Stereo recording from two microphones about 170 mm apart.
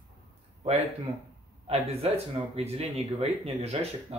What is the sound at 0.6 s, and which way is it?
Speech, 35° right (ahead or behind).